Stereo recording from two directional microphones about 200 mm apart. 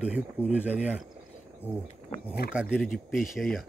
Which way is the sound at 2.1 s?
35° left (ahead or behind).